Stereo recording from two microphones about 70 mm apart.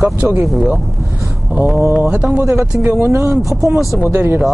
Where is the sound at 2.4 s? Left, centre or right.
Right.